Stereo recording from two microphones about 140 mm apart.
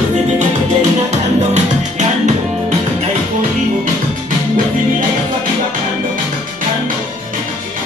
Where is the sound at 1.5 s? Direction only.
55° right (ahead or behind).